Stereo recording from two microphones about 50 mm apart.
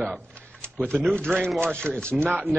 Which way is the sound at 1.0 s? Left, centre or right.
Right.